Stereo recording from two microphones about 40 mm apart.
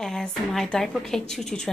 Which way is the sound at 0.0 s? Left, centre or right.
Centre.